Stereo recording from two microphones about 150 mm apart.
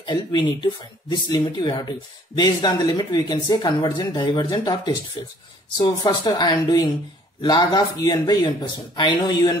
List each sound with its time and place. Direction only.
0.0 s speech: 30° left (ahead or behind)